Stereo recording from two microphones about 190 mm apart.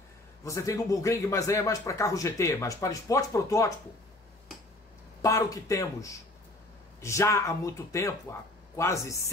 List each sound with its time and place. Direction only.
0.4 s a man's voice: 15° left (ahead or behind)
5.2 s a man's voice: 15° left (ahead or behind)